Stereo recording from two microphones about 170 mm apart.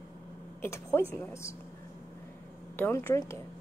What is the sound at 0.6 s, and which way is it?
Speech, 15° left (ahead or behind).